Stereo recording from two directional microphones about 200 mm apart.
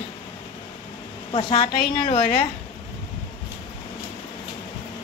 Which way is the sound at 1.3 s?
25° left (ahead or behind).